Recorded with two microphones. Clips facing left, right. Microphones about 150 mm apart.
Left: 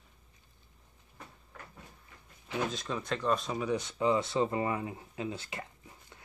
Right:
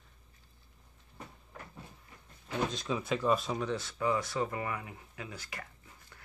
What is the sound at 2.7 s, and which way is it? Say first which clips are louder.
Speech: right 2 dB; centre (ahead or behind).